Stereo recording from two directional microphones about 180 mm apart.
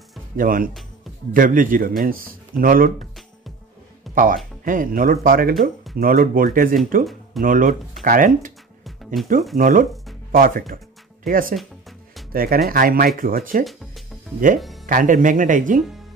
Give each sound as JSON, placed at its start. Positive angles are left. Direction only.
{"t": 0.4, "sound": "a man's voice", "side_deg": -50}
{"t": 4.1, "sound": "a man's voice", "side_deg": -50}
{"t": 8.8, "sound": "music", "side_deg": 0}
{"t": 9.6, "sound": "a man's voice", "side_deg": -50}
{"t": 14.6, "sound": "music", "side_deg": 0}
{"t": 14.9, "sound": "a man's voice", "side_deg": -50}